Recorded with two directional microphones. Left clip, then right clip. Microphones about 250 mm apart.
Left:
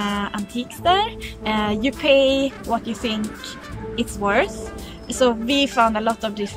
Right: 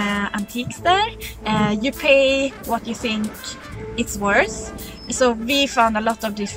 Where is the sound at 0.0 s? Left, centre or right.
Centre.